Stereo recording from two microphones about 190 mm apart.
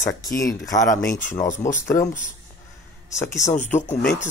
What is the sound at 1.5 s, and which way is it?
Speech, 40° left (ahead or behind).